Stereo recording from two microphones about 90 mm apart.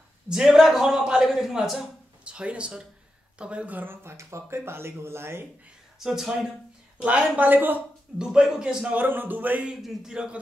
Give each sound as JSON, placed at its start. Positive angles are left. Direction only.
{"t": 0.3, "sound": "a man's voice", "side_deg": -5}
{"t": 5.9, "sound": "speech", "side_deg": -5}
{"t": 7.0, "sound": "speech", "side_deg": -15}
{"t": 8.2, "sound": "speech", "side_deg": -5}
{"t": 8.9, "sound": "speech", "side_deg": -20}
{"t": 9.8, "sound": "speech", "side_deg": -5}